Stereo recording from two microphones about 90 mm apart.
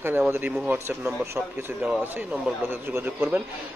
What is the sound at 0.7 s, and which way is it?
Speech, 25° right (ahead or behind).